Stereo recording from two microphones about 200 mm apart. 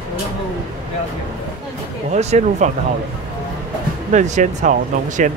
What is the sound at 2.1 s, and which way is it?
Speech, 35° right (ahead or behind).